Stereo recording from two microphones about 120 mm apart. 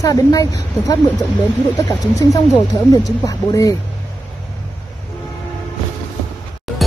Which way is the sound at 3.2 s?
30° left (ahead or behind).